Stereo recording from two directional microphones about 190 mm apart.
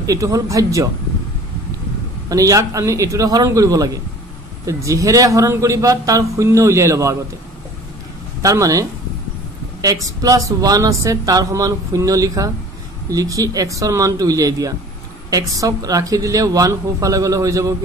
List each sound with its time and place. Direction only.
0.0 s a man's voice: 15° right (ahead or behind)
2.2 s a man's voice: 15° right (ahead or behind)
8.4 s speech: 15° right (ahead or behind)
10.0 s a man's voice: 15° right (ahead or behind)